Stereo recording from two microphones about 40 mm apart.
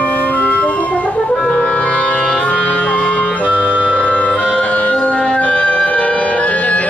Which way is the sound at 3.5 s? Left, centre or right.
Right.